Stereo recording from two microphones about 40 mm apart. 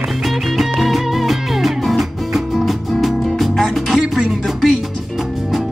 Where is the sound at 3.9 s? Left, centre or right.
Centre.